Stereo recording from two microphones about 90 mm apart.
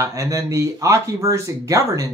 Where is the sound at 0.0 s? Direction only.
35° right (ahead or behind).